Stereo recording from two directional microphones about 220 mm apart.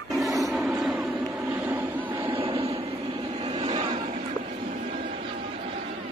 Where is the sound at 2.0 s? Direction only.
20° right (ahead or behind).